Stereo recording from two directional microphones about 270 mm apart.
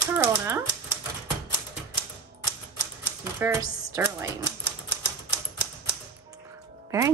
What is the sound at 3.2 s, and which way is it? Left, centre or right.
Speech, centre.